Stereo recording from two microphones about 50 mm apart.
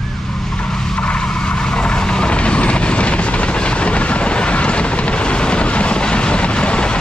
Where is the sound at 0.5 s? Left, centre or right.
Centre.